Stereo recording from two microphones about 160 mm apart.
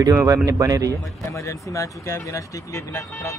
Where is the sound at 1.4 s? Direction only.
20° left (ahead or behind).